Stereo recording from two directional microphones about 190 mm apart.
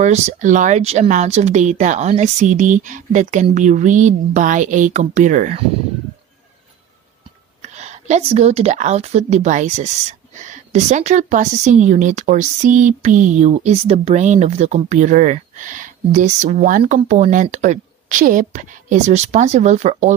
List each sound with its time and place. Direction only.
0.0 s speech: 35° right (ahead or behind)
7.7 s speech: 35° right (ahead or behind)